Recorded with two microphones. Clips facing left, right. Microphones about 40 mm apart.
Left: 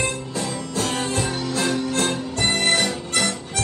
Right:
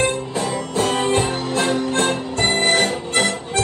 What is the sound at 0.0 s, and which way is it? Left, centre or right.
Music, right.